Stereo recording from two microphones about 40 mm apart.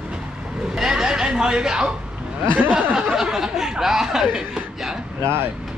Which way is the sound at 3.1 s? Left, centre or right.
Centre.